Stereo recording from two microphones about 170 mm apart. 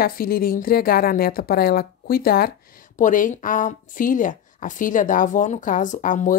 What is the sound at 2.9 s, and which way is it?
Speech, 50° left (ahead or behind).